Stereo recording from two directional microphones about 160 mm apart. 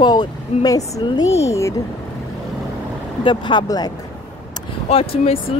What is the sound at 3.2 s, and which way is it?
Speech, 30° left (ahead or behind).